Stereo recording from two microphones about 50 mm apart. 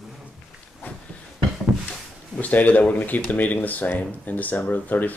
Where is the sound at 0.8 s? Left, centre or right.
Left.